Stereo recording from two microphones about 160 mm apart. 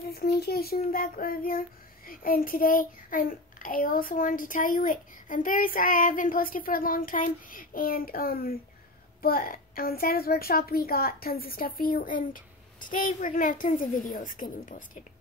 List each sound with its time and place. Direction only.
0.1 s a child's voice: 75° left (ahead or behind); by 14.9 s 60° left (ahead or behind)